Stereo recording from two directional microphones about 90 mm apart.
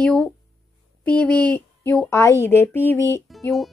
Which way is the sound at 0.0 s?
10° left (ahead or behind).